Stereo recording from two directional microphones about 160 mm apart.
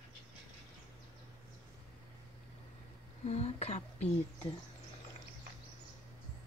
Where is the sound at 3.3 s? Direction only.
40° left (ahead or behind).